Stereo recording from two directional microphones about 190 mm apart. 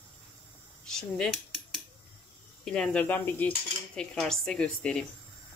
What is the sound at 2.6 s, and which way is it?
Cricket, 5° left (ahead or behind).